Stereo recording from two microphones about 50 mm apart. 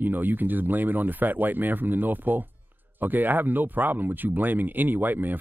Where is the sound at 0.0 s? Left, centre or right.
Right.